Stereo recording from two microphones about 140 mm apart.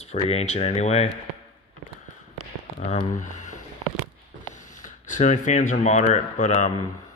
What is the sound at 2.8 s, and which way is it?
Speech, 50° left (ahead or behind).